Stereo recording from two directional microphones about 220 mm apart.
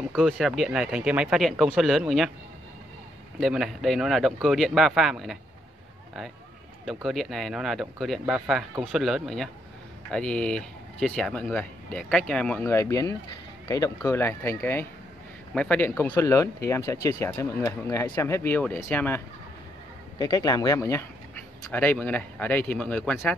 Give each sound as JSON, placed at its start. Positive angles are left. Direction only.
{"t": 0.1, "sound": "speech", "side_deg": 0}
{"t": 3.3, "sound": "speech", "side_deg": 0}
{"t": 6.9, "sound": "speech", "side_deg": 0}